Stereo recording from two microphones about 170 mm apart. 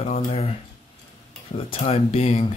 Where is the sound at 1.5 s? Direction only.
35° left (ahead or behind).